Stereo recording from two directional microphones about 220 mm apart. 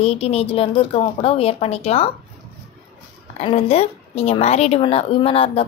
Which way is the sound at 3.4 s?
30° left (ahead or behind).